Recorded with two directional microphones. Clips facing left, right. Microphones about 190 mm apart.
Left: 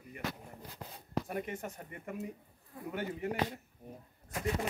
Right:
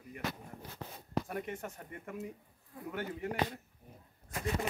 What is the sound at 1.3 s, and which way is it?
Speech, 15° left (ahead or behind).